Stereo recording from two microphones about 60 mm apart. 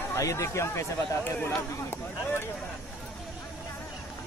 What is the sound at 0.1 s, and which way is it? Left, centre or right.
Speech, left.